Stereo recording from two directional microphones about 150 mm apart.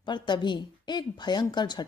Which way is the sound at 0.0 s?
30° left (ahead or behind).